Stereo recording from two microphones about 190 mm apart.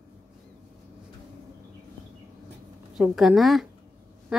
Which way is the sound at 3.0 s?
Centre (ahead or behind).